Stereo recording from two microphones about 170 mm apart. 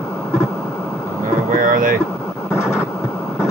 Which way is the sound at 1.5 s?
55° right (ahead or behind).